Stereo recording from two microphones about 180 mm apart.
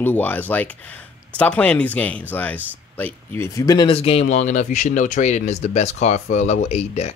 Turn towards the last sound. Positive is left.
turn(degrees=35)  # may be behind; listen again after turning